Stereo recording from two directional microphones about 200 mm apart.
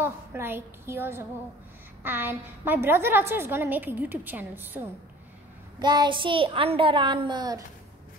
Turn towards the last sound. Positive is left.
turn(degrees=-20)  # may be behind; listen again after turning